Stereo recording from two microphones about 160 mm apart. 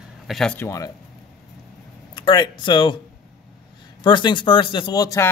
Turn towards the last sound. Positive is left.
turn(degrees=20)  # may be behind; listen again after turning